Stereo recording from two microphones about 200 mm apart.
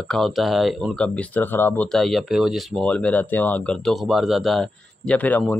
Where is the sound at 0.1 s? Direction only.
Centre (ahead or behind).